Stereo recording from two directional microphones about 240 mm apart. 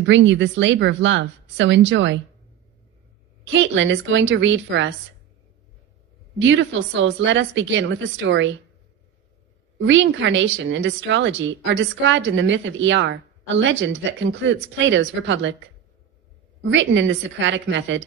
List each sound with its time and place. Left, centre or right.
0.0 s a woman's voice: right
3.4 s a woman's voice: right
6.4 s a woman's voice: right
9.8 s a woman's voice: right
16.6 s a woman's voice: right